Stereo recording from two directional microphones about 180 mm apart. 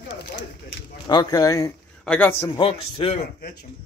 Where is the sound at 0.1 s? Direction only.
80° left.